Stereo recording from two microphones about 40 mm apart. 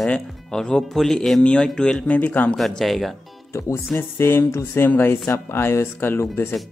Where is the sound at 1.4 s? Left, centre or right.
Left.